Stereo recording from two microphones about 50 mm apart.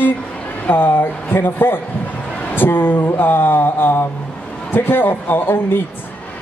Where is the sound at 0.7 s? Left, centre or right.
Left.